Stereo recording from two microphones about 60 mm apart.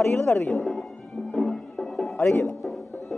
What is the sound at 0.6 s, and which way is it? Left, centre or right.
Music, centre.